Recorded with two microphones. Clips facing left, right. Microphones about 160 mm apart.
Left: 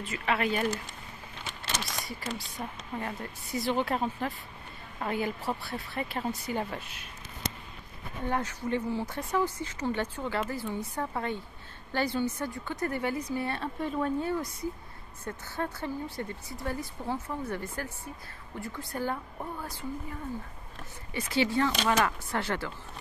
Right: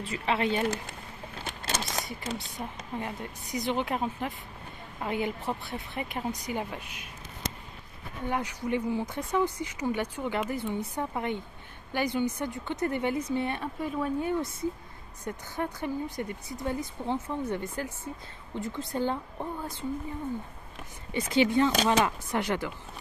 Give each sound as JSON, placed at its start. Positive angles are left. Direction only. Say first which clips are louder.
{"t": 0.0, "sound": "speech", "louder": "right 1 dB", "side_deg": -30}
{"t": 1.9, "sound": "speech", "louder": "right 2 dB", "side_deg": -20}
{"t": 8.3, "sound": "speech", "louder": "right 1 dB", "side_deg": -15}
{"t": 14.3, "sound": "speech", "louder": "right 2 dB", "side_deg": -25}
{"t": 21.1, "sound": "speech", "louder": "right 4 dB", "side_deg": -20}